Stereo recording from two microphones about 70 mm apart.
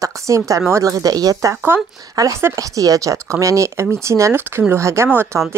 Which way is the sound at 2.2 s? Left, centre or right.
Right.